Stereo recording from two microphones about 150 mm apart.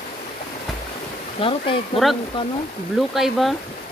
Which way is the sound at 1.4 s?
35° left (ahead or behind).